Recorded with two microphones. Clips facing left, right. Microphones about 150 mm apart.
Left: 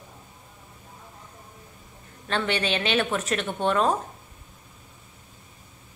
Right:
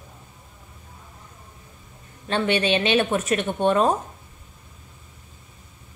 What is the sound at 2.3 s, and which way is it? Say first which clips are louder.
A woman's voice: right 5 dB; 20° right (ahead or behind).